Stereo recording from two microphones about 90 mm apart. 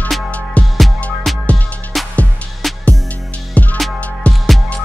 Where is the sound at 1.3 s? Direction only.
Centre (ahead or behind).